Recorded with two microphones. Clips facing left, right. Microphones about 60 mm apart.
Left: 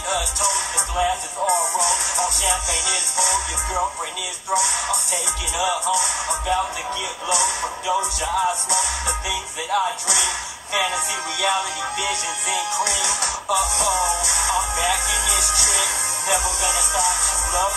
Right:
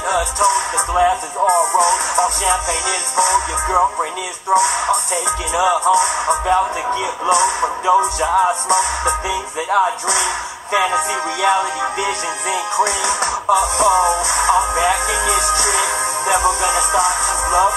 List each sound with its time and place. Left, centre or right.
0.1 s music: right
5.5 s speech: right